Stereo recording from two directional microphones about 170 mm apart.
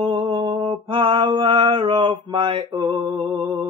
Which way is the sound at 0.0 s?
30° right (ahead or behind).